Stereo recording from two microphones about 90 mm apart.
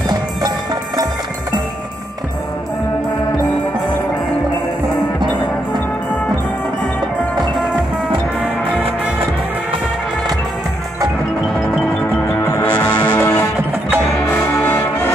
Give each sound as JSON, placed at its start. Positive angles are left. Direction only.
{"t": 12.6, "sound": "music", "side_deg": 20}
{"t": 14.6, "sound": "music", "side_deg": 20}